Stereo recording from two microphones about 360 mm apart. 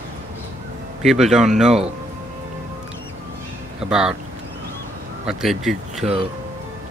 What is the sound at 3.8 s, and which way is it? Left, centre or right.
Speech, centre.